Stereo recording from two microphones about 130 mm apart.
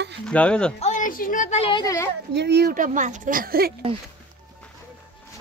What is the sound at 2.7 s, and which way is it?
Speech, 85° right.